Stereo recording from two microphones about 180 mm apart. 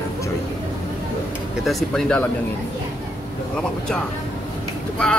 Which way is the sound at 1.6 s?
5° left (ahead or behind).